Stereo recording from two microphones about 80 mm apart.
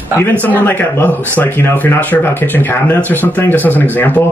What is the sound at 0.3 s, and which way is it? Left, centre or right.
Speech, left.